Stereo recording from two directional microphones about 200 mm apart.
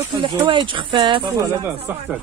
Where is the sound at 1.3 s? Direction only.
15° right (ahead or behind).